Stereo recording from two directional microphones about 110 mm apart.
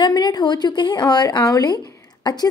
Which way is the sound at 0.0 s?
40° left (ahead or behind).